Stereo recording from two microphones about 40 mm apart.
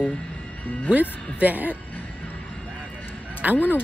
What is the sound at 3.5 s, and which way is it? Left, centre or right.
Speech, left.